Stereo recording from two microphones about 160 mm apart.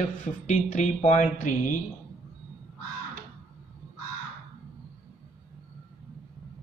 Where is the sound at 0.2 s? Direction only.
50° left (ahead or behind).